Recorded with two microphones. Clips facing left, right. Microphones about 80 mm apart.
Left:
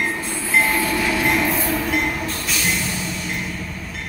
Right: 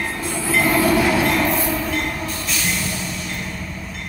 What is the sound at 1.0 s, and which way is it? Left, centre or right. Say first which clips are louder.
Train: right 4 dB; right.